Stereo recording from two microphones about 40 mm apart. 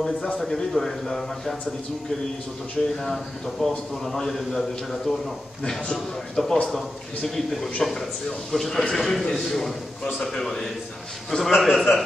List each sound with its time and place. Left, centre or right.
0.4 s a man's voice: centre
2.8 s a man's voice: centre
5.6 s a man's voice: centre
6.3 s a man's voice: centre